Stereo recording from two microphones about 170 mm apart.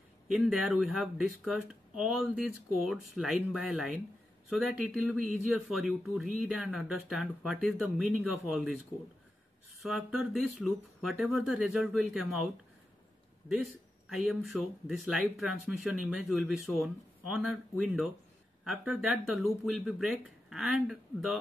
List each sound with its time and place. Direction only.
0.3 s speech: 5° right (ahead or behind)
9.8 s speech: centre (ahead or behind)
14.0 s speech: centre (ahead or behind)